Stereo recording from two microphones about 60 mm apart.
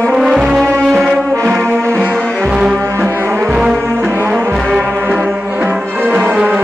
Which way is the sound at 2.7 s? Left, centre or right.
Right.